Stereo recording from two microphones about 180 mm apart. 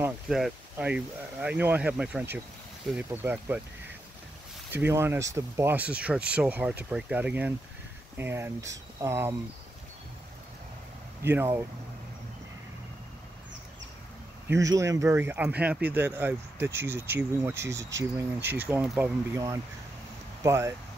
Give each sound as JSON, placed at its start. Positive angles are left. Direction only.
{"t": 0.3, "sound": "speech", "side_deg": -5}
{"t": 4.7, "sound": "speech", "side_deg": -15}
{"t": 11.2, "sound": "speech", "side_deg": -10}
{"t": 14.5, "sound": "speech", "side_deg": -15}